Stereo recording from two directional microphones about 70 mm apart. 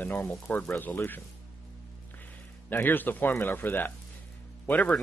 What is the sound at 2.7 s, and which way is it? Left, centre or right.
Speech, left.